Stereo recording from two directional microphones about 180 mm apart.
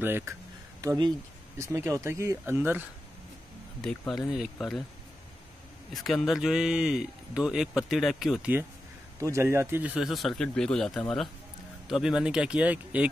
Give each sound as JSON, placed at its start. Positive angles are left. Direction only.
{"t": 0.0, "sound": "speech", "side_deg": -10}
{"t": 4.1, "sound": "speech", "side_deg": 0}
{"t": 5.9, "sound": "speech", "side_deg": 0}